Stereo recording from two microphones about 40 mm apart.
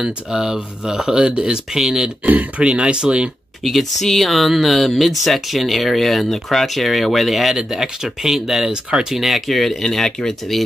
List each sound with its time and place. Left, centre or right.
0.0 s speech: centre
2.2 s speech: right
2.6 s speech: right
3.6 s speech: centre